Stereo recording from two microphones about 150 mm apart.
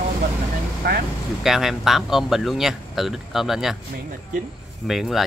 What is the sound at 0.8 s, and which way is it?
Speech, 90° right.